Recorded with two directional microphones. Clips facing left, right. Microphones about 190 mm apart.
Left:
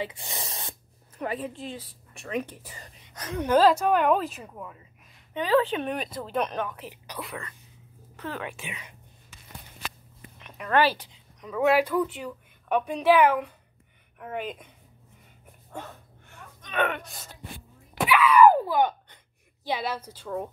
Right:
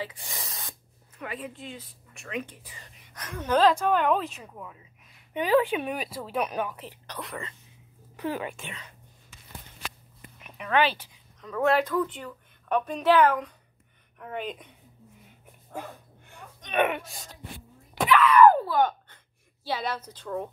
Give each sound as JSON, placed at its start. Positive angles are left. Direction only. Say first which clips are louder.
{"t": 0.0, "sound": "speech", "louder": "left 3 dB", "side_deg": 25}
{"t": 3.1, "sound": "a woman's voice", "louder": "left 6 dB", "side_deg": 20}
{"t": 3.4, "sound": "a woman's voice", "louder": "left 2 dB", "side_deg": 5}
{"t": 5.3, "sound": "speech", "louder": "even", "side_deg": -15}
{"t": 6.9, "sound": "a woman's voice", "louder": "left 1 dB", "side_deg": 5}
{"t": 8.2, "sound": "speech", "louder": "right 4 dB", "side_deg": -10}
{"t": 8.5, "sound": "a woman's voice", "louder": "even", "side_deg": 5}
{"t": 10.7, "sound": "a woman's voice", "louder": "left 2 dB", "side_deg": 10}
{"t": 16.3, "sound": "gasp", "louder": "right 3 dB", "side_deg": -20}
{"t": 16.9, "sound": "a woman's voice", "louder": "right 2 dB", "side_deg": 0}
{"t": 17.9, "sound": "a sound", "louder": "even", "side_deg": 5}
{"t": 19.6, "sound": "a woman's voice", "louder": "left 1 dB", "side_deg": 10}